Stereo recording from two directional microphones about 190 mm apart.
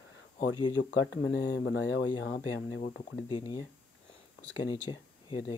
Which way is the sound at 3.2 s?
25° left (ahead or behind).